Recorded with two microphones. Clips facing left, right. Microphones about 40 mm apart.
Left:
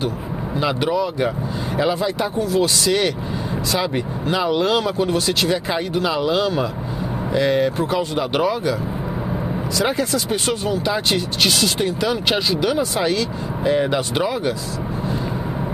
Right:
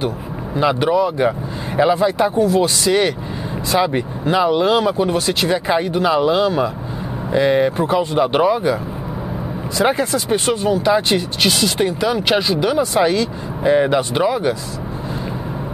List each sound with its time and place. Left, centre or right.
0.9 s speech: centre
2.3 s speech: right
2.6 s speech: right
9.8 s speech: right; by 14.5 s centre